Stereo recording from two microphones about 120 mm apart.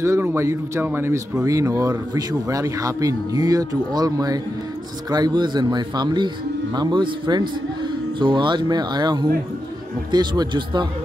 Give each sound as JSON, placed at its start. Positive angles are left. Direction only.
{"t": 0.0, "sound": "speech", "side_deg": -20}